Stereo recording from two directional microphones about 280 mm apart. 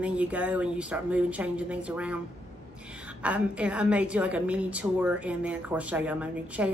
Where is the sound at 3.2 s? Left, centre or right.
Centre.